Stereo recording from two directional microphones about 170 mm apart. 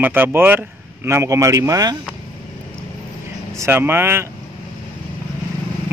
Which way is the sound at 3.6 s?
15° right (ahead or behind).